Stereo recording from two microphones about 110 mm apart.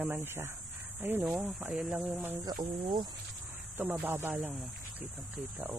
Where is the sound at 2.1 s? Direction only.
20° right (ahead or behind).